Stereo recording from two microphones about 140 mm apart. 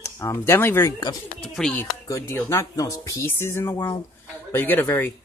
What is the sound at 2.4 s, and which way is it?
Speech, 15° left (ahead or behind).